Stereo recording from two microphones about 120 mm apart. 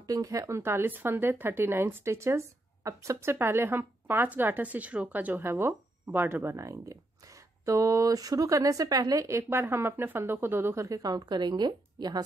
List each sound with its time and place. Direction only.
0.0 s speech: 30° right (ahead or behind)
0.6 s speech: 15° right (ahead or behind); by 12.2 s 35° right (ahead or behind)